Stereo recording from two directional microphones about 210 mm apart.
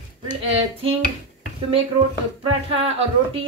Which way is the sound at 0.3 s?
25° right (ahead or behind).